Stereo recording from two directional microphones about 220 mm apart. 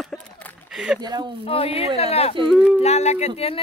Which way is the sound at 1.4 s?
25° left (ahead or behind).